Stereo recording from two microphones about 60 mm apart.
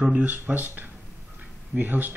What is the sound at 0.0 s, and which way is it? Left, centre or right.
Speech, right.